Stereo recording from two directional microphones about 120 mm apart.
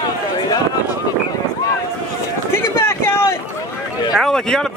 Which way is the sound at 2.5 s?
20° left (ahead or behind).